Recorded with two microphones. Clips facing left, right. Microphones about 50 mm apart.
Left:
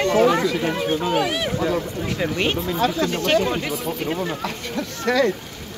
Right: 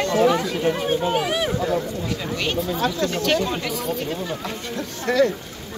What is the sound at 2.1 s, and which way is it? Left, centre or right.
Speech, left.